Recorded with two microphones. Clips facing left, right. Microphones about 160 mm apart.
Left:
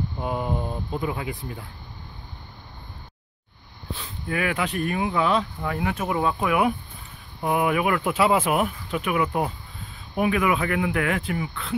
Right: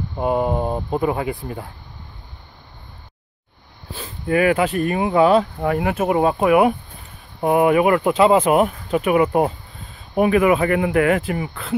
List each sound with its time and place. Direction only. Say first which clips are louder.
0.2 s speech: right 9 dB; 55° right (ahead or behind)
4.0 s a sound: right 10 dB; 55° right (ahead or behind)
4.7 s speech: right 7 dB; 45° right (ahead or behind)